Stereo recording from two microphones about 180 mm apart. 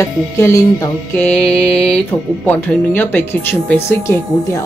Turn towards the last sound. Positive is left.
turn(degrees=15)  # may be behind; listen again after turning